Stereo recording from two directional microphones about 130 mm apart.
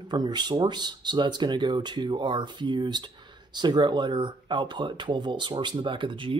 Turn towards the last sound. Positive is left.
turn(degrees=-40)  # may be behind; listen again after turning